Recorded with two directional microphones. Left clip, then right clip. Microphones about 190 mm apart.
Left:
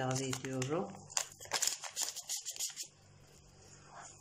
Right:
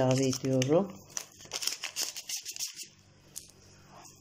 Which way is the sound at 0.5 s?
25° right (ahead or behind).